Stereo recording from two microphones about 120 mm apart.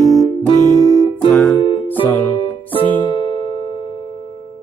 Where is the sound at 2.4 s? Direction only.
50° left (ahead or behind).